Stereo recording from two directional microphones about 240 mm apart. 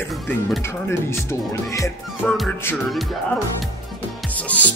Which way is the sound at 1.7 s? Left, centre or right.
Centre.